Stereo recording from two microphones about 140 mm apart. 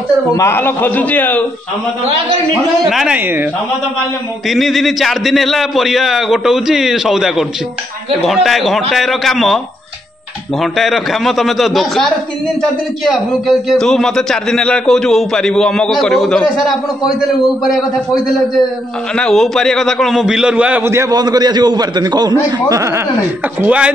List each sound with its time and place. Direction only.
0.4 s a man's voice: 15° left (ahead or behind)
2.9 s a man's voice: centre (ahead or behind)
3.2 s a man's voice: 15° right (ahead or behind)
4.5 s a man's voice: centre (ahead or behind)
10.6 s a man's voice: centre (ahead or behind)
13.1 s a man's voice: centre (ahead or behind); by 23.0 s 20° right (ahead or behind)
23.6 s a man's voice: 10° right (ahead or behind)